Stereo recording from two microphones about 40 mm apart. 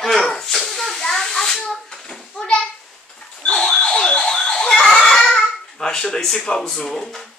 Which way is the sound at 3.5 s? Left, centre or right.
Centre.